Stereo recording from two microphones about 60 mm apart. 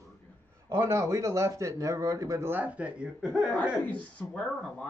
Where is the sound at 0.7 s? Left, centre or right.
Right.